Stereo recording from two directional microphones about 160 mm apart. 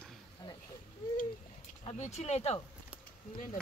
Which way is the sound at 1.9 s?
45° left (ahead or behind).